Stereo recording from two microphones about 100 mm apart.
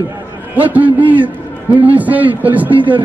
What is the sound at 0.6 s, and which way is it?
A man's voice, 15° right (ahead or behind).